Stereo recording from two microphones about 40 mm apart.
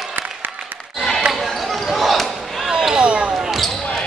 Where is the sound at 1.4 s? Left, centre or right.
Centre.